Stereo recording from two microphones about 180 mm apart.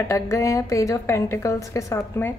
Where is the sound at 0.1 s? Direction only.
15° left (ahead or behind).